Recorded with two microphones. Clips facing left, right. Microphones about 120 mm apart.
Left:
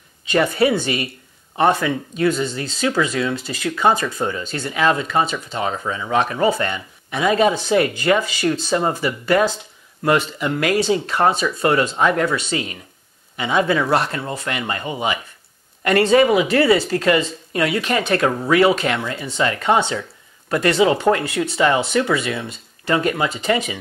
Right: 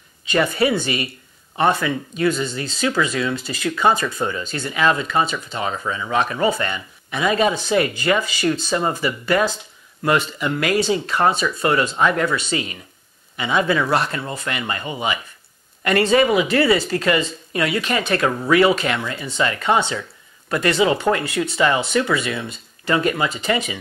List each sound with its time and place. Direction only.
0.3 s speech: 45° left (ahead or behind)
12.4 s speech: 50° left (ahead or behind)